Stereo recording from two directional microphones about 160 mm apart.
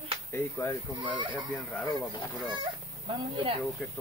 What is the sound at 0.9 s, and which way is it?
Speech, 30° right (ahead or behind).